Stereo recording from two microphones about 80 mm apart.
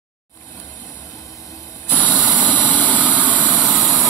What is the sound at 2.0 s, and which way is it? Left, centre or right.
Engine, centre.